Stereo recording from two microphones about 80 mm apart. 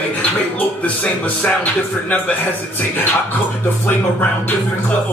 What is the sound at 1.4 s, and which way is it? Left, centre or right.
Speech, centre.